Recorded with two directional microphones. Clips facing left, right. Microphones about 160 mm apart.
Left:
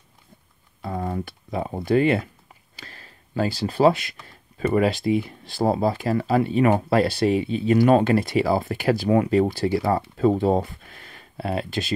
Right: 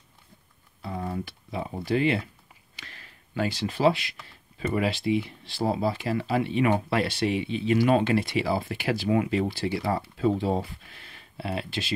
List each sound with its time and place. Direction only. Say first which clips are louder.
0.8 s speech: left 4 dB; 50° left (ahead or behind)
2.7 s speech: left 4 dB; 35° left (ahead or behind)